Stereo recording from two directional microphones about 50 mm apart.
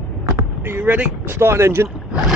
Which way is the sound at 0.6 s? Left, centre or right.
Right.